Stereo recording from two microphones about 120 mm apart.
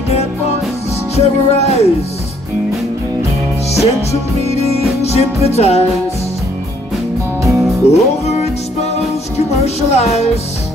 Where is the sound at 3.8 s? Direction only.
60° left (ahead or behind).